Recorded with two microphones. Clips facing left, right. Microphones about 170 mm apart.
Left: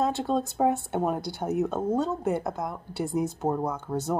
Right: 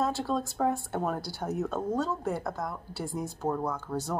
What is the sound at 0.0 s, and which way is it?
Speech, 20° left (ahead or behind).